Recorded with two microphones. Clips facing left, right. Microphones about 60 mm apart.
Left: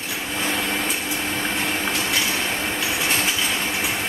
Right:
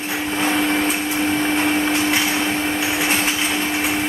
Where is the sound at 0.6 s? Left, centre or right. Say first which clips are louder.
Right 6 dB; centre.